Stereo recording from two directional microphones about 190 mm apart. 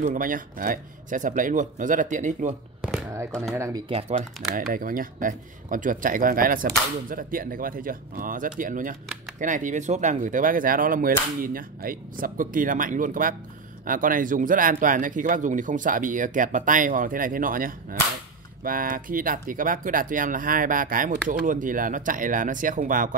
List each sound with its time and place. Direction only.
0.0 s speech: 45° right (ahead or behind)
2.8 s a sound: 5° right (ahead or behind)
3.5 s speech: 15° right (ahead or behind)
4.6 s speech: 45° right (ahead or behind)